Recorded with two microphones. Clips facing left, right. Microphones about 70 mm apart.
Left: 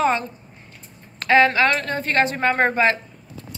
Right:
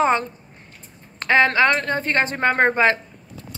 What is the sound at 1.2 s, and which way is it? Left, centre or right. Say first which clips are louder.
A woman's voice: even; right.